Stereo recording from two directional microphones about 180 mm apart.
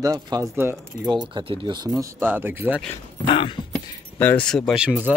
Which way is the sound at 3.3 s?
30° left (ahead or behind).